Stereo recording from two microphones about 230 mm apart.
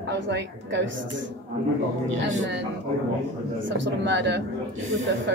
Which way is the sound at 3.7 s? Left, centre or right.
Right.